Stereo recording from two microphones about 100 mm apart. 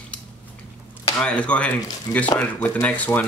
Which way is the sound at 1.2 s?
10° left (ahead or behind).